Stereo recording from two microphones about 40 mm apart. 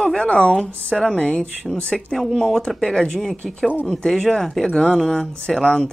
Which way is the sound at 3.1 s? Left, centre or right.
Centre.